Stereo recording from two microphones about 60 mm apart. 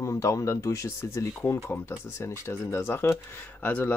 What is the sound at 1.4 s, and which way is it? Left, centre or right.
Speech, left.